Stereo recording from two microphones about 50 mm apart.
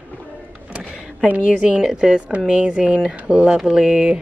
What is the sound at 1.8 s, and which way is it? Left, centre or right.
A woman's voice, centre.